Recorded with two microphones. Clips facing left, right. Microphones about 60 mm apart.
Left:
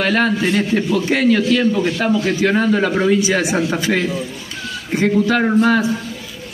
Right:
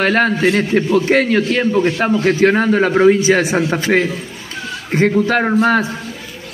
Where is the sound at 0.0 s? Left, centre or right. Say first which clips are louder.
Right 3 dB; right.